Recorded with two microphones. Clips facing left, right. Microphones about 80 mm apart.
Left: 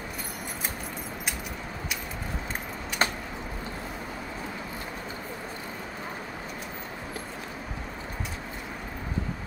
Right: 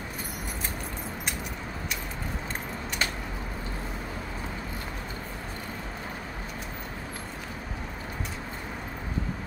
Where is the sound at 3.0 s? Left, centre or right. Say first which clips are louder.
Left 5 dB; left.